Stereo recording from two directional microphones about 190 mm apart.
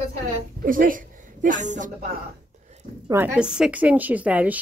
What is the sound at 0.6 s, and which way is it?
A woman's voice, 45° right (ahead or behind).